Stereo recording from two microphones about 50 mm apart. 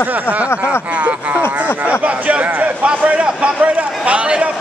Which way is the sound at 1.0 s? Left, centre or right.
Right.